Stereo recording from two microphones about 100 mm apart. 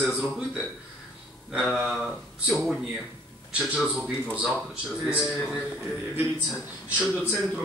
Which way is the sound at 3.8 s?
5° right (ahead or behind).